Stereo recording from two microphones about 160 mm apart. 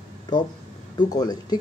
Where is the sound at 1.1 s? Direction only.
25° left (ahead or behind).